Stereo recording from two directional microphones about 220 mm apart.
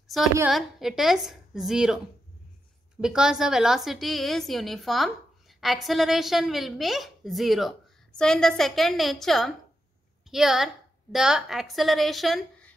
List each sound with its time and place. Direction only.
0.1 s a woman's voice: centre (ahead or behind)
3.0 s a woman's voice: 5° right (ahead or behind)